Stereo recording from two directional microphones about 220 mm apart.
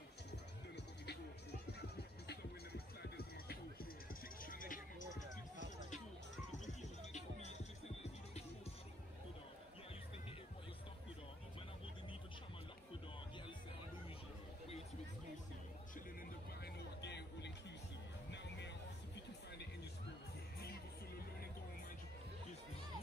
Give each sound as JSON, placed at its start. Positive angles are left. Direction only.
{"t": 3.0, "sound": "music", "side_deg": 45}
{"t": 6.5, "sound": "music", "side_deg": 30}
{"t": 16.6, "sound": "a sound", "side_deg": 50}